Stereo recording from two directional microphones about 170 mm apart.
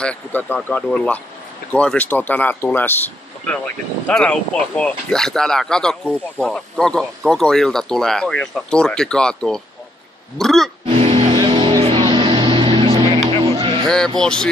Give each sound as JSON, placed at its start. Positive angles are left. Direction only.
{"t": 0.0, "sound": "speech", "side_deg": 10}
{"t": 10.9, "sound": "music", "side_deg": -35}
{"t": 13.8, "sound": "speech", "side_deg": 5}